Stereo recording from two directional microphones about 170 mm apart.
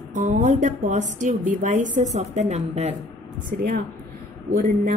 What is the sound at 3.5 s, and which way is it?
A woman's voice, 55° right (ahead or behind).